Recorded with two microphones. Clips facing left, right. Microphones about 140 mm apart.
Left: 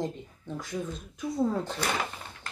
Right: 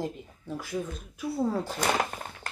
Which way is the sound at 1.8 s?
45° right (ahead or behind).